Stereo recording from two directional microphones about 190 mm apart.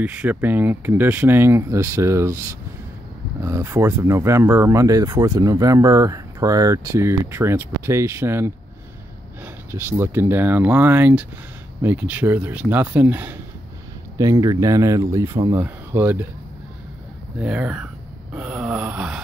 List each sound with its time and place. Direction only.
0.0 s speech: 5° right (ahead or behind)
3.4 s speech: 15° right (ahead or behind)
17.4 s speech: 5° right (ahead or behind)
18.3 s wail: 5° right (ahead or behind)